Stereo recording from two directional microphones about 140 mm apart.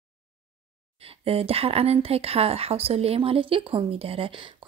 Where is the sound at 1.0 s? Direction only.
45° right (ahead or behind).